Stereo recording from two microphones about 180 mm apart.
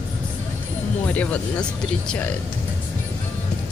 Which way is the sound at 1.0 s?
10° left (ahead or behind).